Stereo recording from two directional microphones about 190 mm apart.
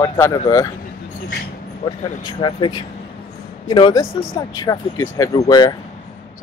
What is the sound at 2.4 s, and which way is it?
Speech, 25° left (ahead or behind).